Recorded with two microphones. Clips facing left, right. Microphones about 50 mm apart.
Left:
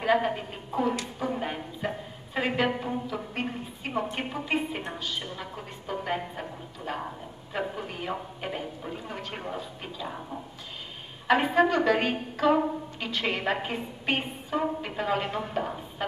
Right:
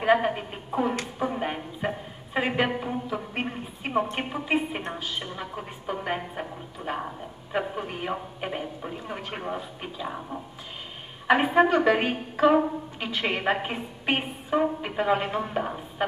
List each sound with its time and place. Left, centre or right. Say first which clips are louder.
0.0 s a sound: right 3 dB; centre
4.9 s music: right 1 dB; centre
7.5 s a woman's voice: right 3 dB; centre